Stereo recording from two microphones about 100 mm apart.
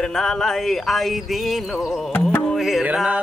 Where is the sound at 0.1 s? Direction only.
5° left (ahead or behind).